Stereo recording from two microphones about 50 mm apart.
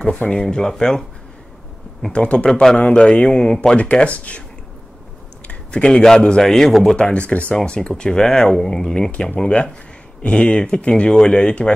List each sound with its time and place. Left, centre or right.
0.0 s speech: left
0.3 s speech: centre
2.1 s speech: left
5.5 s a sound: left
6.0 s speech: centre
7.0 s speech: left